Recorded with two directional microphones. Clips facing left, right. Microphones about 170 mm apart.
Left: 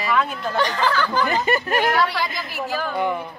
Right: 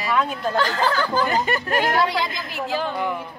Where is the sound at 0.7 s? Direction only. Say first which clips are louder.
Even; 35° right (ahead or behind).